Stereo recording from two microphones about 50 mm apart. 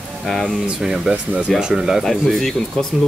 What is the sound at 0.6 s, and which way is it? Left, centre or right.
Speech, centre.